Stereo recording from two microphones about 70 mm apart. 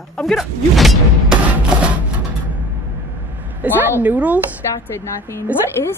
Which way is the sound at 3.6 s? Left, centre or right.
Right.